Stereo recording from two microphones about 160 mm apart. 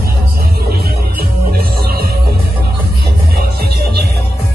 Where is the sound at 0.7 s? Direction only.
70° right (ahead or behind).